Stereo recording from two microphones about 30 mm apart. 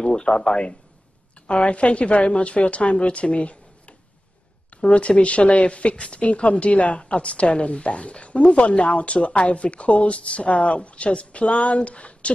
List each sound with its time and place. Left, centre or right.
0.0 s speech: left